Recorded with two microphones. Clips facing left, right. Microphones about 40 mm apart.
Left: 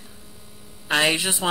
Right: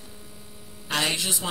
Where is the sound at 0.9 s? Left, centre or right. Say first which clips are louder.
Left 6 dB; left.